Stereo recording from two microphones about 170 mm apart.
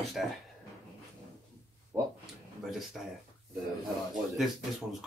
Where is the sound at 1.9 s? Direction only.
20° right (ahead or behind).